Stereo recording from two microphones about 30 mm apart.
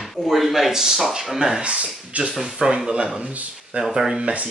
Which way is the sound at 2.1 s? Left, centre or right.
Right.